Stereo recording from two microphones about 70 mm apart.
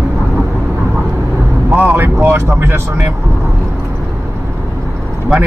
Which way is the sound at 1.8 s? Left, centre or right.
Right.